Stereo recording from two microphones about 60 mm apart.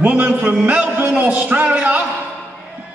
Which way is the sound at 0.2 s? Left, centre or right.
Right.